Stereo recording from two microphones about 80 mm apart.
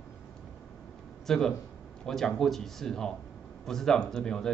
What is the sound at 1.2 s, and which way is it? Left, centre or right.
A man's voice, centre.